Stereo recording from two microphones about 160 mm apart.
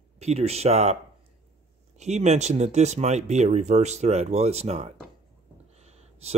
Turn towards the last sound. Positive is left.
turn(degrees=-40)  # may be behind; listen again after turning